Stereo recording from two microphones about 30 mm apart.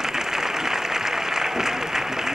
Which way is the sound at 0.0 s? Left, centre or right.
Centre.